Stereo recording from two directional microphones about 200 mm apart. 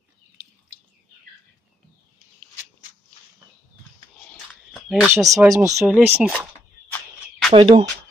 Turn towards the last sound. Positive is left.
turn(degrees=-25)  # may be behind; listen again after turning